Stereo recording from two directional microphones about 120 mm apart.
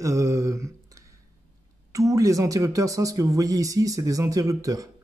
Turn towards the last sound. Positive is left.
turn(degrees=-30)  # may be behind; listen again after turning